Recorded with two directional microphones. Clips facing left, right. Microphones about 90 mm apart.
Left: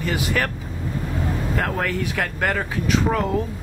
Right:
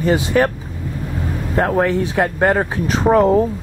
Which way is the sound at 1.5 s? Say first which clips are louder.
Right 11 dB; 25° right (ahead or behind).